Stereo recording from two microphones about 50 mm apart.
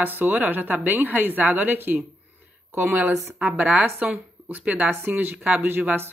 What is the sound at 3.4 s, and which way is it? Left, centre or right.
Speech, right.